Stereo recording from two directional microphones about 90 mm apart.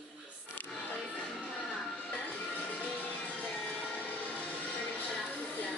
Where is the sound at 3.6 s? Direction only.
15° left (ahead or behind).